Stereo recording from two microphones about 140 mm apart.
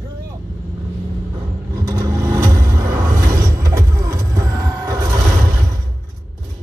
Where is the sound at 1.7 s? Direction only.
20° right (ahead or behind).